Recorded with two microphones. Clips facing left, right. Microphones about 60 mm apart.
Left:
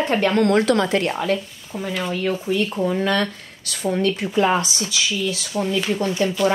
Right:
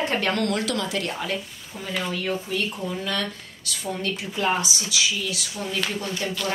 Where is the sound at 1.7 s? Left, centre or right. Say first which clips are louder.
Left 8 dB; left.